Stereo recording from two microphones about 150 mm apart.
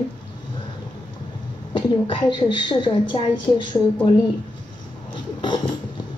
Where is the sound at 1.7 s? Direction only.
30° left (ahead or behind).